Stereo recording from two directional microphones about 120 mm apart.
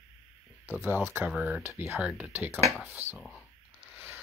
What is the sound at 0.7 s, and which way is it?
Speech, 20° right (ahead or behind).